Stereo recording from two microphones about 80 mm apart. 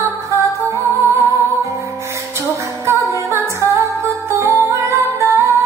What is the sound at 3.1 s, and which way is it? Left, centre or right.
Music, right.